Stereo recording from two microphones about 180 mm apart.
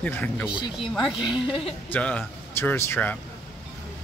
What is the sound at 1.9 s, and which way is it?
A man's voice, 5° left (ahead or behind).